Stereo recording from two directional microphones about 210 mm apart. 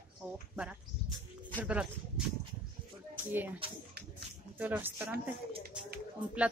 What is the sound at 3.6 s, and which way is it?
Speech, 25° right (ahead or behind).